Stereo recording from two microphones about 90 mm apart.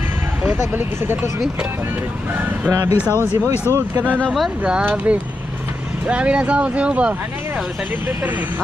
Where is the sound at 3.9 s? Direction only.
20° right (ahead or behind).